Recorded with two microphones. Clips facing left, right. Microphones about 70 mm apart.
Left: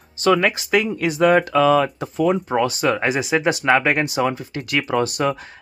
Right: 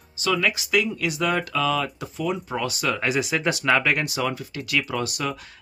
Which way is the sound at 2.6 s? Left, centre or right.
Left.